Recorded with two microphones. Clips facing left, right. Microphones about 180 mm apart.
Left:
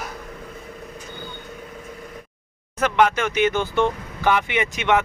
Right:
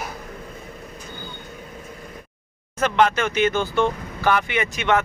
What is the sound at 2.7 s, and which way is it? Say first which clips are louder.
Speech: even; 10° left (ahead or behind).